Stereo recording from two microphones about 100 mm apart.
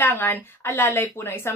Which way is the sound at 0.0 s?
20° left (ahead or behind).